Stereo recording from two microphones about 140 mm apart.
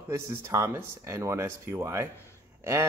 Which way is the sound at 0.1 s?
20° right (ahead or behind).